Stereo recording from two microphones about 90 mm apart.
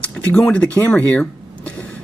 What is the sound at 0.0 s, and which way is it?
Speech, 15° left (ahead or behind).